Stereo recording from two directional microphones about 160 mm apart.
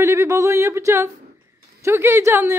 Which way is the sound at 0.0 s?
15° right (ahead or behind).